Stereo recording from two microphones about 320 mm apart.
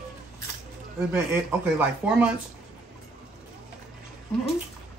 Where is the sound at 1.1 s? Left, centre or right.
Centre.